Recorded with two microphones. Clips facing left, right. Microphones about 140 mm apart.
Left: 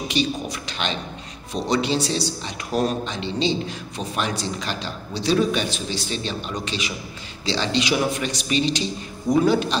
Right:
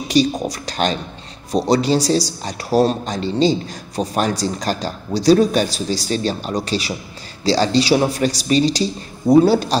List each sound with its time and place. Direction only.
0.1 s speech: 40° right (ahead or behind)